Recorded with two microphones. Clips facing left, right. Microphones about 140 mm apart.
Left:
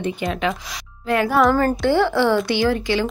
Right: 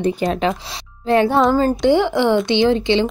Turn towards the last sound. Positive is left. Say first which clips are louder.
# right 4 dB
turn(degrees=-25)  # may be behind; listen again after turning